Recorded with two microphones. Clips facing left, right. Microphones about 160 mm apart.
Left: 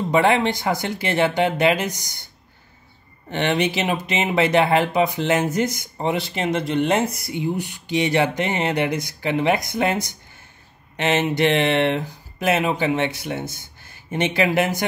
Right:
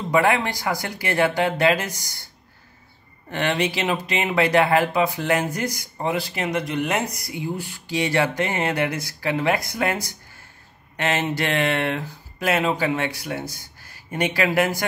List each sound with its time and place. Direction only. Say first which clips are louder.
0.1 s speech: left 1 dB; 25° left (ahead or behind)
3.3 s speech: left 2 dB; 20° left (ahead or behind)